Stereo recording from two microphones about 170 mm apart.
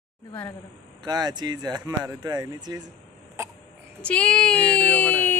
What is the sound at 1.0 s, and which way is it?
Speech, 25° right (ahead or behind).